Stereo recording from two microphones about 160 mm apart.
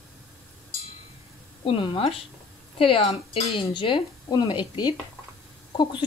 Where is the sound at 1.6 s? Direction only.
35° left (ahead or behind).